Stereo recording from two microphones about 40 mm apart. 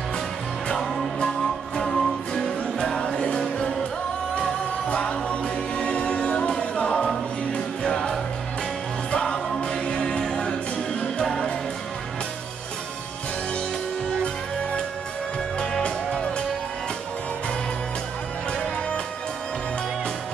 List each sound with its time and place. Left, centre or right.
1.8 s music: centre
15.8 s music: left